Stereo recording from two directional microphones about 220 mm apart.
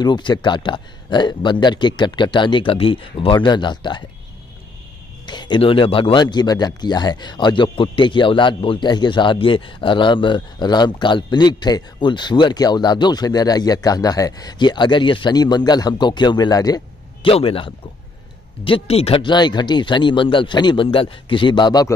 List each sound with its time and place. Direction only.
0.0 s speech: 20° left (ahead or behind)
5.2 s speech: 20° left (ahead or behind)